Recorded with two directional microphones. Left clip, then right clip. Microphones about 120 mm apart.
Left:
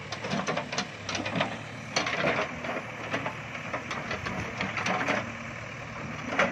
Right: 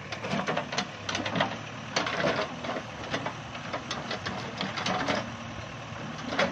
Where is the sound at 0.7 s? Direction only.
Centre (ahead or behind).